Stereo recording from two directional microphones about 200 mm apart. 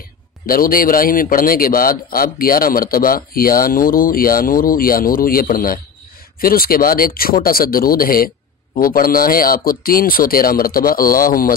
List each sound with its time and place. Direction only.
0.5 s a man's voice: 45° left (ahead or behind)